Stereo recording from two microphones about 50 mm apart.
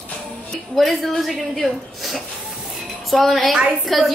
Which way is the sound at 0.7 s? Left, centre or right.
Centre.